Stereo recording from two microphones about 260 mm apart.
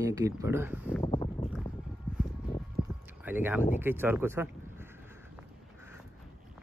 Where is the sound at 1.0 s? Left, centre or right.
Centre.